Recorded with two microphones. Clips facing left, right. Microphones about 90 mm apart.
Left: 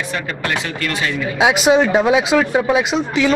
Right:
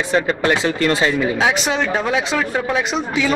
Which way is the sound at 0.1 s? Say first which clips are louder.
Right 9 dB; 25° right (ahead or behind).